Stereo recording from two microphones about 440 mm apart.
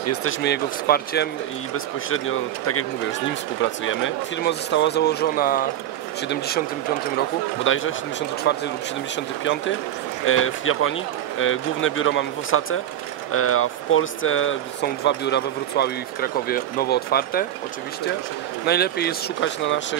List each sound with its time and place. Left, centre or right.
0.0 s speech: left
18.7 s speech: left